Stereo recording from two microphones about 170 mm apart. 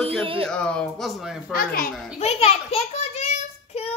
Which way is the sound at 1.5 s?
60° left (ahead or behind).